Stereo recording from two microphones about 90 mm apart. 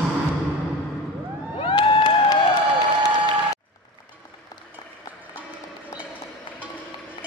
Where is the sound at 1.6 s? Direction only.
65° left (ahead or behind).